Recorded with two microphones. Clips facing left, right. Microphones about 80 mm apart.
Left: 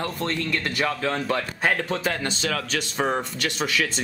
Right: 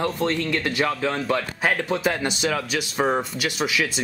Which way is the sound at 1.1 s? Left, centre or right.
Centre.